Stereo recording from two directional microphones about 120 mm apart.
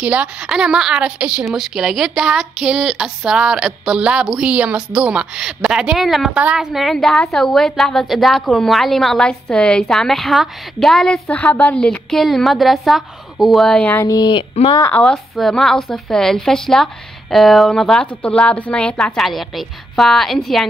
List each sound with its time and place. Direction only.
0.0 s a woman's voice: 10° right (ahead or behind); by 13.9 s 5° left (ahead or behind)
13.9 s speech: 30° left (ahead or behind)
14.9 s a woman's voice: 5° left (ahead or behind)